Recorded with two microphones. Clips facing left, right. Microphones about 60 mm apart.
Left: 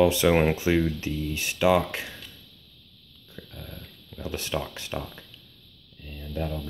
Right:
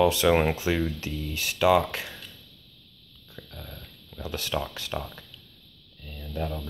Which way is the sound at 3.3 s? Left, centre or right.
Centre.